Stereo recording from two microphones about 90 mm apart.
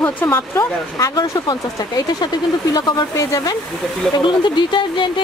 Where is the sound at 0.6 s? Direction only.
45° left (ahead or behind).